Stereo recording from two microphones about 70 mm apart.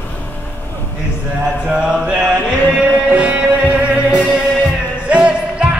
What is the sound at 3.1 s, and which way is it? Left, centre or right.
Music, centre.